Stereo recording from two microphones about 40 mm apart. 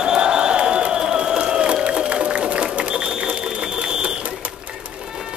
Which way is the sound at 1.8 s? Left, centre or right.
Right.